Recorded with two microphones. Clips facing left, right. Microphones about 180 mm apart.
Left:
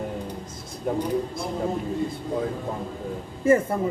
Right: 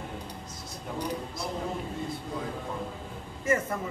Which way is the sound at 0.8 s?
50° left (ahead or behind).